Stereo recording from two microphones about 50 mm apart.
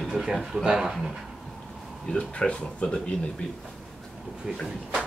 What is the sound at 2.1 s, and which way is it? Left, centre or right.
Speech, left.